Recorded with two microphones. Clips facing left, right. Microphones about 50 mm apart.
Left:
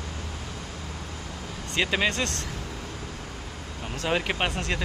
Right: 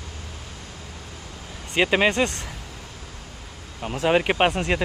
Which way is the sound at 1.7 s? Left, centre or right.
Right.